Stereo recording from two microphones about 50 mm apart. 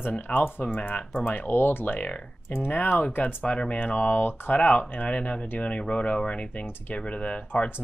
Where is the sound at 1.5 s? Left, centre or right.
Left.